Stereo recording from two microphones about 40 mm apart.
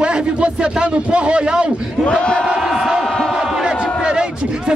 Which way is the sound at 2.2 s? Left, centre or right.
Left.